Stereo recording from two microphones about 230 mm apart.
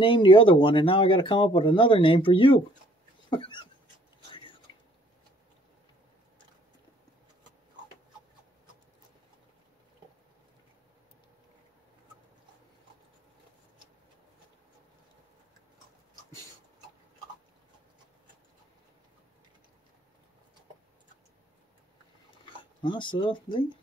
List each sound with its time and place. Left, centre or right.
0.0 s speech: left
3.3 s dog: left
22.4 s speech: left